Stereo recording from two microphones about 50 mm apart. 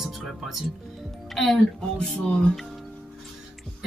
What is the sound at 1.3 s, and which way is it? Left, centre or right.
Speech, centre.